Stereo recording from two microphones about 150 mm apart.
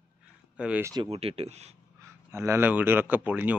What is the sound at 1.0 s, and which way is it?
Speech, 40° right (ahead or behind).